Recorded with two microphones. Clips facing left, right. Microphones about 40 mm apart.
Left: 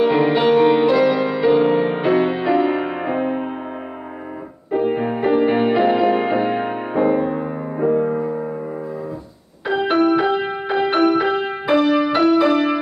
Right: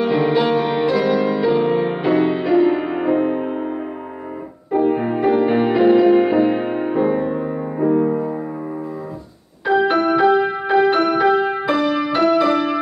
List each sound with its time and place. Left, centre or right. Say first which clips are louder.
0.1 s music: left 1 dB; centre
4.6 s music: right 2 dB; centre
5.1 s music: left 1 dB; centre
9.7 s music: right 1 dB; centre